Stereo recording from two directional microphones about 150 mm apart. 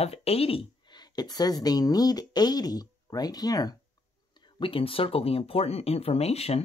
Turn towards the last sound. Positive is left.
turn(degrees=40)  # may be behind; listen again after turning